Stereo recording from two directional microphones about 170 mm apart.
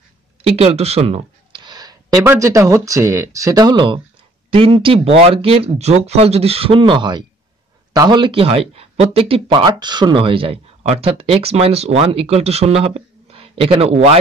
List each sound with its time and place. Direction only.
0.4 s speech: 35° right (ahead or behind)